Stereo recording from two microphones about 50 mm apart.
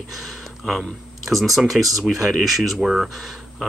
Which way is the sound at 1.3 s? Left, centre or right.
Centre.